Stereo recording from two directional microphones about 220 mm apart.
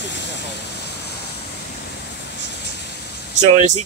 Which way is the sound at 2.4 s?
50° left (ahead or behind).